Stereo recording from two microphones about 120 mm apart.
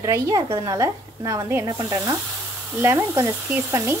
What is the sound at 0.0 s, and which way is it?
A woman's voice, 30° right (ahead or behind).